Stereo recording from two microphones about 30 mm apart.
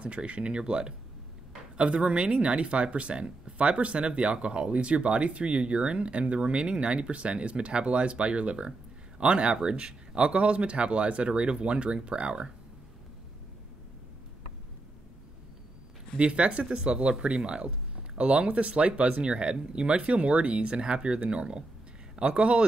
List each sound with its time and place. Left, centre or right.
0.0 s speech: right
16.2 s speech: right
19.2 s speech: right